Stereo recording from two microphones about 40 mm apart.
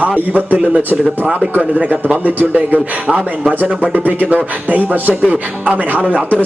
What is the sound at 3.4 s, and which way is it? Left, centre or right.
Speech, right.